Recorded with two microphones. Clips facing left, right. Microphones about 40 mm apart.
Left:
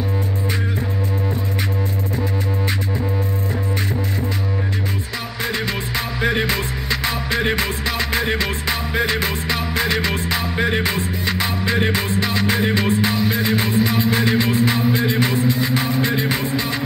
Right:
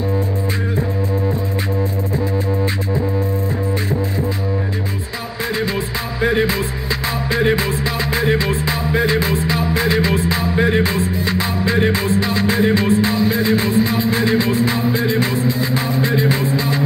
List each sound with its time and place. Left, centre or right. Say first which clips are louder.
6.2 s music: right 4 dB; left